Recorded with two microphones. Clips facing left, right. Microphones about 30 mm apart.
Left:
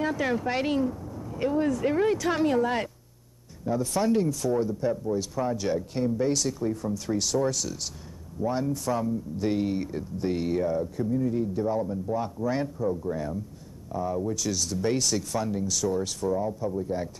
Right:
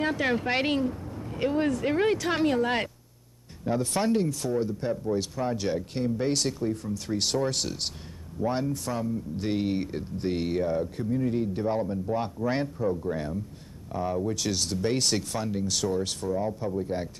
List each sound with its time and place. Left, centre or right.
0.0 s speech: right
1.0 s a sound: right
1.3 s speech: right
5.1 s speech: right
7.1 s speech: right
8.9 s speech: centre
9.4 s speech: right